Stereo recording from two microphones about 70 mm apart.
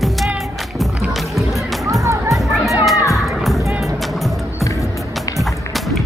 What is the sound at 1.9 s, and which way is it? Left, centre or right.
Music, right.